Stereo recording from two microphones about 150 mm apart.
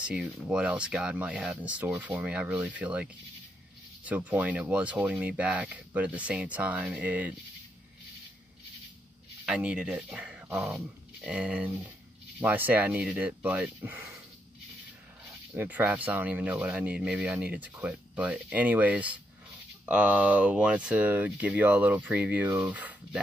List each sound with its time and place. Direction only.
0.0 s speech: 5° right (ahead or behind)
9.5 s speech: 5° right (ahead or behind)
10.7 s dog: 10° right (ahead or behind)
12.4 s speech: 10° right (ahead or behind)
15.5 s speech: 10° right (ahead or behind)